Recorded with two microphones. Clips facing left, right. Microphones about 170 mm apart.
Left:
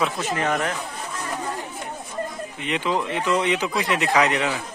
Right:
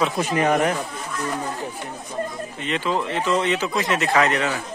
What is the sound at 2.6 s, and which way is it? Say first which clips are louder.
Speech: even; 15° left (ahead or behind).